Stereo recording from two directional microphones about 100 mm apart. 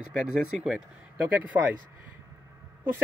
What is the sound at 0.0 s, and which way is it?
Speech, 10° right (ahead or behind).